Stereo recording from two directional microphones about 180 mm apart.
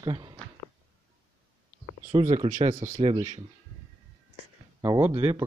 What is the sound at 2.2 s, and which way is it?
Speech, 40° right (ahead or behind).